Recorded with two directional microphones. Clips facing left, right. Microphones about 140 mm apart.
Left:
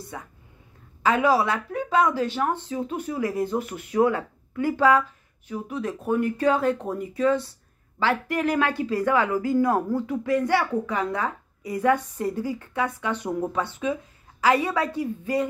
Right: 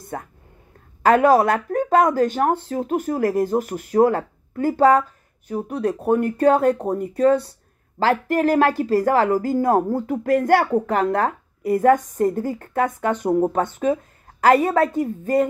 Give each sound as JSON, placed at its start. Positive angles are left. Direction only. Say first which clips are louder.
{"t": 0.1, "sound": "whispering", "louder": "right 8 dB", "side_deg": -50}
{"t": 1.0, "sound": "speech", "louder": "right 6 dB", "side_deg": -50}
{"t": 6.7, "sound": "speech", "louder": "right 5 dB", "side_deg": -35}
{"t": 7.0, "sound": "speech", "louder": "right 5 dB", "side_deg": -60}
{"t": 8.0, "sound": "speech", "louder": "right 5 dB", "side_deg": -40}